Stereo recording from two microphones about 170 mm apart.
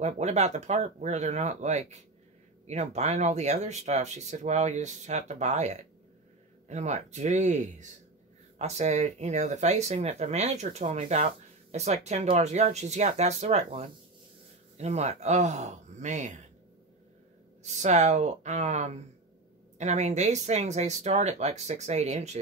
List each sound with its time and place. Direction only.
0.0 s speech: 40° right (ahead or behind)
17.6 s speech: 40° right (ahead or behind)